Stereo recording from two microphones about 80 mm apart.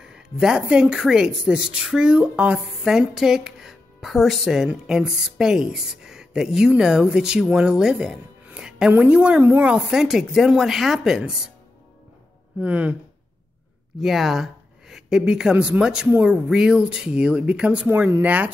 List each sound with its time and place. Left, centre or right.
0.0 s a woman's voice: centre
9.7 s speech: centre
12.5 s speech: centre
14.0 s speech: centre
17.8 s a woman's voice: right